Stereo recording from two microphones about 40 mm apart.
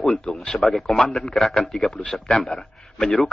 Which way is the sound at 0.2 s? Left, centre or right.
Centre.